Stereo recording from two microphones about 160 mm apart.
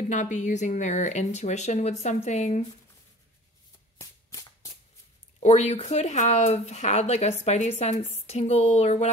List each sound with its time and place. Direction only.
0.1 s speech: 50° left (ahead or behind)
4.0 s a sound: 20° left (ahead or behind)
5.4 s speech: 45° left (ahead or behind)